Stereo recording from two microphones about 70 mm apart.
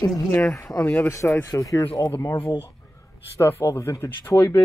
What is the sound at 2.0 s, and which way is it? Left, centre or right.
Speech, left.